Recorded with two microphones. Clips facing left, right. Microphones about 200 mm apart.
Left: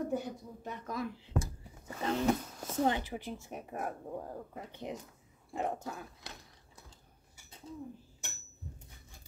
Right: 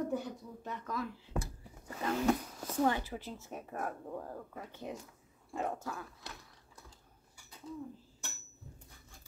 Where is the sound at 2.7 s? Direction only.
20° left (ahead or behind).